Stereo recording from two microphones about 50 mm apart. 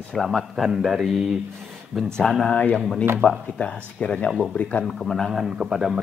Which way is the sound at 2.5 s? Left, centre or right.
Left.